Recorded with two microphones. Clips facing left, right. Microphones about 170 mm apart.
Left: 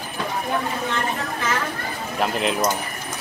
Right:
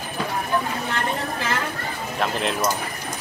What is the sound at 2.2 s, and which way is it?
Speech, 5° left (ahead or behind).